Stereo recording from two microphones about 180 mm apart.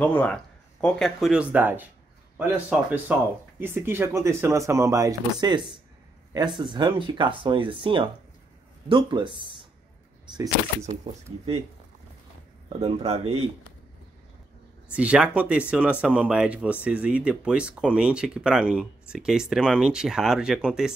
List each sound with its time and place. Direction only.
0.0 s speech: 10° left (ahead or behind); by 9.3 s 25° right (ahead or behind)
12.8 s speech: 35° right (ahead or behind)
14.9 s speech: 5° right (ahead or behind)